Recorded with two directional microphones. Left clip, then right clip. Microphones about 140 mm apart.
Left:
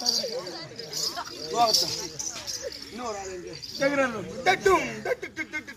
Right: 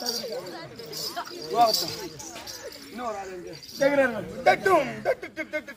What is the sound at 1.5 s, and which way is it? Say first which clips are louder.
Speech: right 1 dB; centre (ahead or behind).